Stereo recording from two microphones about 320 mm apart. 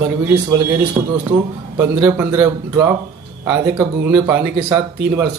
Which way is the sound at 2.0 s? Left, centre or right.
Centre.